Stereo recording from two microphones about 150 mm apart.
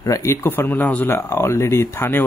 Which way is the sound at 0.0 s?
20° left (ahead or behind).